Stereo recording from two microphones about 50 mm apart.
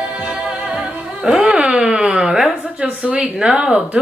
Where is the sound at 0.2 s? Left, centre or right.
Centre.